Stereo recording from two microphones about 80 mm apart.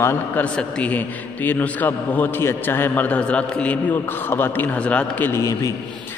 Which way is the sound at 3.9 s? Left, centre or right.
Left.